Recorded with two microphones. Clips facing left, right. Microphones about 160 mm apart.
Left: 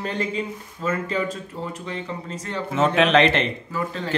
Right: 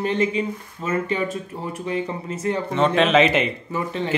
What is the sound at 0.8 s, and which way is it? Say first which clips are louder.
Speech: left 1 dB; 10° right (ahead or behind).